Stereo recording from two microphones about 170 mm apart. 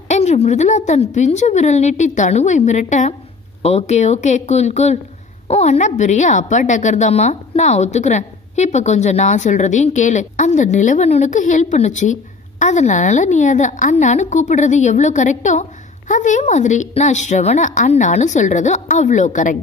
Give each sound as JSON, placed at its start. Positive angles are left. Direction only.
{"t": 0.1, "sound": "a woman's voice", "side_deg": 40}